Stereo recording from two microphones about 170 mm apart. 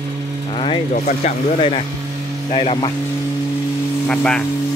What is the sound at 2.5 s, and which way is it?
Speech, 35° left (ahead or behind).